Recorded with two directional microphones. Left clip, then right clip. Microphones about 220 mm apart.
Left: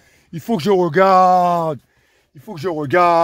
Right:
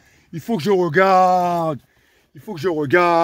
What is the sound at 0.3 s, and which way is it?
Speech, 25° left (ahead or behind).